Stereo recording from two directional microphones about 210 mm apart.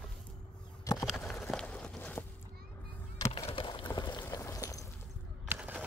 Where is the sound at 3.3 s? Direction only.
25° left (ahead or behind).